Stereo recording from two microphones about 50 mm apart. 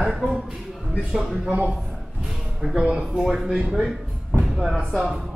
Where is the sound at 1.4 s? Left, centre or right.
Right.